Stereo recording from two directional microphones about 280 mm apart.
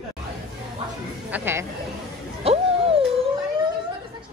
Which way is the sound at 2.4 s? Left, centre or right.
Right.